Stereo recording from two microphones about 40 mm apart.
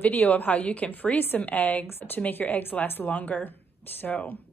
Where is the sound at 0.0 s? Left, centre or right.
Left.